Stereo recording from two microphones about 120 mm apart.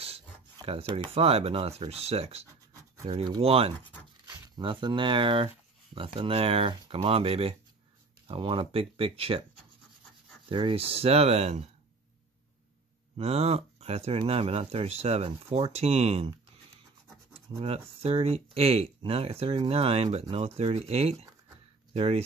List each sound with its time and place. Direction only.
0.7 s speech: 55° right (ahead or behind)
4.6 s speech: 40° right (ahead or behind)
10.5 s speech: 45° right (ahead or behind); by 11.7 s 65° right (ahead or behind)
13.2 s speech: 60° right (ahead or behind)